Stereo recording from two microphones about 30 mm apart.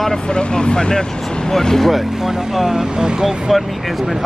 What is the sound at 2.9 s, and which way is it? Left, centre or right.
Speech, right.